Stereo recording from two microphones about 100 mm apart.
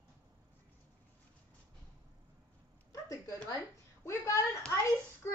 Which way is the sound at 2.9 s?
35° left (ahead or behind).